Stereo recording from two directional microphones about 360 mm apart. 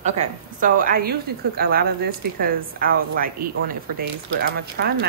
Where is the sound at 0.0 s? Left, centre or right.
Centre.